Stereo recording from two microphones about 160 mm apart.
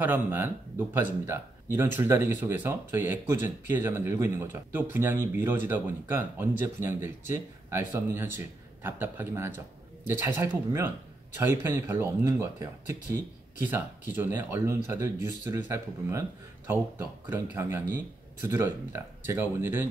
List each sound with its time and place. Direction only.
0.0 s speech: 10° right (ahead or behind)